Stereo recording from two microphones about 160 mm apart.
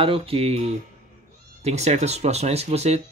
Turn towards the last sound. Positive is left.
turn(degrees=-40)  # may be behind; listen again after turning